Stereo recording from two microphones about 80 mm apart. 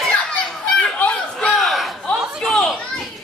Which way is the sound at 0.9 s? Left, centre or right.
Centre.